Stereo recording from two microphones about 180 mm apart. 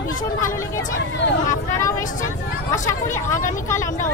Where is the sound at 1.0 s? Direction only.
90° left.